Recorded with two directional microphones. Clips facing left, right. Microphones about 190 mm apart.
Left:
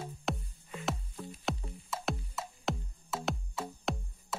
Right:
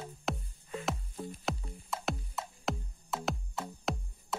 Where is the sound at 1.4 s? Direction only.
Centre (ahead or behind).